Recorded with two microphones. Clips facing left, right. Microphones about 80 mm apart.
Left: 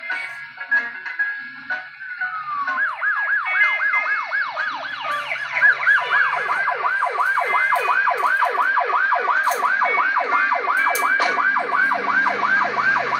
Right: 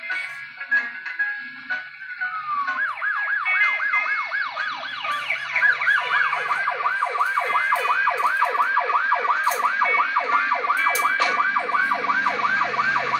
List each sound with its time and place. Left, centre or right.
2.6 s emergency vehicle: centre